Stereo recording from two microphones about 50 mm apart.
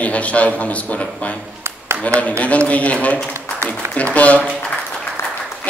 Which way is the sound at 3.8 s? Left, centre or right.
Right.